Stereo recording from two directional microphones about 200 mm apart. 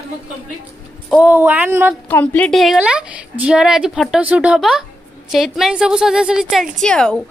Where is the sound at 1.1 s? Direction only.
10° right (ahead or behind).